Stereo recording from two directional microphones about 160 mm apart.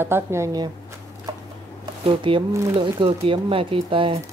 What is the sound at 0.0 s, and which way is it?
Speech, 15° right (ahead or behind).